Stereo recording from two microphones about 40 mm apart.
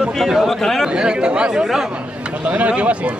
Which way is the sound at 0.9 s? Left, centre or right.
Right.